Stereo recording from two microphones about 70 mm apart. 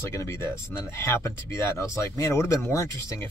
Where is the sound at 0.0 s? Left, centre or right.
Left.